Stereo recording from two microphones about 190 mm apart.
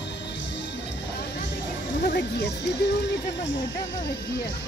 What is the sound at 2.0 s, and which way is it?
Music, 60° left (ahead or behind).